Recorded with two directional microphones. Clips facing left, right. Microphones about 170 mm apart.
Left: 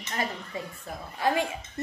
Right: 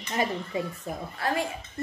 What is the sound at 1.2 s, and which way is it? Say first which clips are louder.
Speech: left 3 dB; 15° left (ahead or behind).